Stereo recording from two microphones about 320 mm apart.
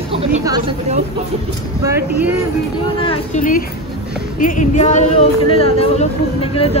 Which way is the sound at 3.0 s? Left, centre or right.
Centre.